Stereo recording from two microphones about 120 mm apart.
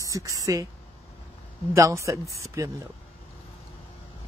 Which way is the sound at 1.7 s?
25° right (ahead or behind).